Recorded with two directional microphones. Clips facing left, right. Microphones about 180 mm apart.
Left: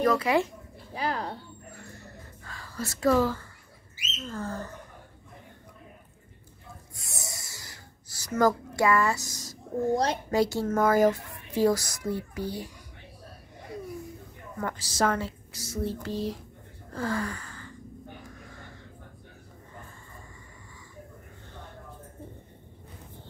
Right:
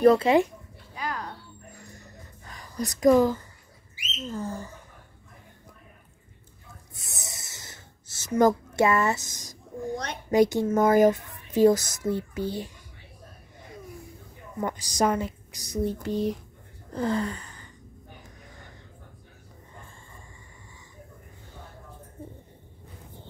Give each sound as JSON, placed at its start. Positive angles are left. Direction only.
{"t": 0.0, "sound": "a child's voice", "side_deg": -30}
{"t": 0.9, "sound": "music", "side_deg": 30}
{"t": 1.7, "sound": "a sound", "side_deg": -15}
{"t": 3.9, "sound": "bird", "side_deg": -15}
{"t": 7.0, "sound": "a sound", "side_deg": -20}
{"t": 10.3, "sound": "a child's voice", "side_deg": -20}
{"t": 14.6, "sound": "speech", "side_deg": -15}
{"t": 16.9, "sound": "gasp", "side_deg": -20}